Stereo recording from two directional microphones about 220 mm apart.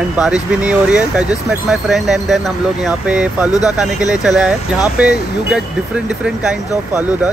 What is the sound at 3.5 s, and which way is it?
Speech, 15° left (ahead or behind).